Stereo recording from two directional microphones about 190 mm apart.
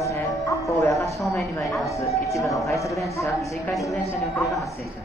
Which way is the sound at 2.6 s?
15° left (ahead or behind).